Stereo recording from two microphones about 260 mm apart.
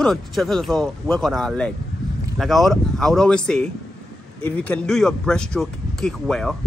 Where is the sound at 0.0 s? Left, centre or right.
Centre.